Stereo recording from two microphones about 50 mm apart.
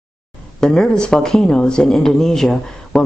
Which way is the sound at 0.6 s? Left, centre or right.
Centre.